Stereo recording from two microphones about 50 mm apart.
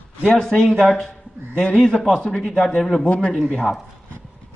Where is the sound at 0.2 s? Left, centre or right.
Centre.